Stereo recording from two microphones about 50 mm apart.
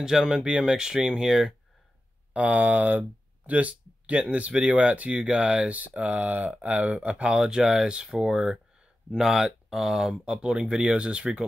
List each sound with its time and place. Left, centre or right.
0.0 s speech: centre
2.3 s speech: right